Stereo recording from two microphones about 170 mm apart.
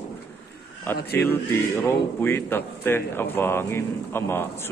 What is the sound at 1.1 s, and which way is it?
Speech, 10° left (ahead or behind).